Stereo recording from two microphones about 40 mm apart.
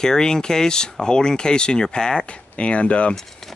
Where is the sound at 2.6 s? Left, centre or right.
Left.